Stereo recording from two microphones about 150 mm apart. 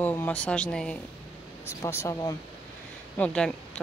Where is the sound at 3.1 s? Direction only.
5° left (ahead or behind).